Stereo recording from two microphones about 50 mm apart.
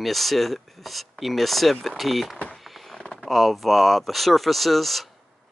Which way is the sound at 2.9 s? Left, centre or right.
Centre.